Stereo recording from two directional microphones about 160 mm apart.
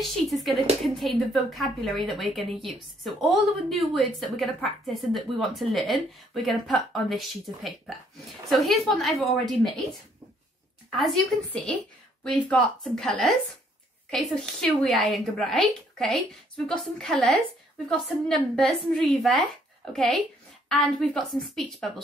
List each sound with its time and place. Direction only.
0.0 s a woman's voice: centre (ahead or behind)
10.9 s a woman's voice: centre (ahead or behind)